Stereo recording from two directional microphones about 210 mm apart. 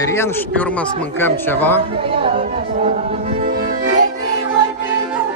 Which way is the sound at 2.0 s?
25° right (ahead or behind).